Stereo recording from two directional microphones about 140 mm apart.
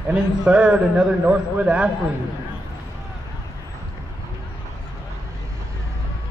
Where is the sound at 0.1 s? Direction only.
5° right (ahead or behind).